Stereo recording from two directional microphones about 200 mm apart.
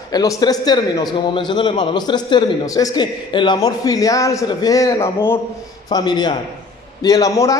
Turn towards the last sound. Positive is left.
turn(degrees=15)  # may be behind; listen again after turning